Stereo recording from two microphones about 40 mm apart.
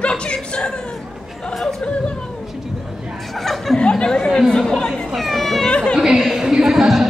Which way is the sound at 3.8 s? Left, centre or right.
Left.